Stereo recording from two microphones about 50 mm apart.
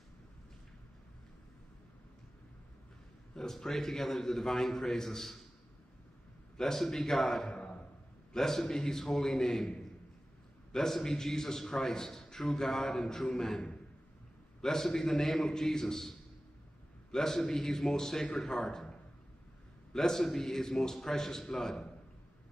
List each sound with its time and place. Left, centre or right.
3.3 s a man's voice: centre
6.5 s a man's voice: centre
18.2 s a man's voice: left
18.5 s a man's voice: centre